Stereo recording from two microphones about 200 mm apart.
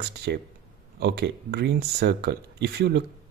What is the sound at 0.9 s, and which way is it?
Speech, 55° right (ahead or behind).